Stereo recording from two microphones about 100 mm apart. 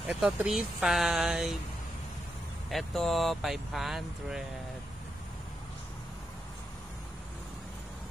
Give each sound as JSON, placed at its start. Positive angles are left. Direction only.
{"t": 0.1, "sound": "speech", "side_deg": -15}
{"t": 0.5, "sound": "speech", "side_deg": -5}
{"t": 2.7, "sound": "speech", "side_deg": 0}